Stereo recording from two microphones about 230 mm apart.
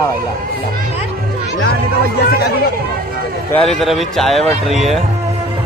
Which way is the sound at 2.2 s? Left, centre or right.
Left.